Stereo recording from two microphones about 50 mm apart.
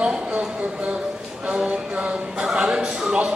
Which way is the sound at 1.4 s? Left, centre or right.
Right.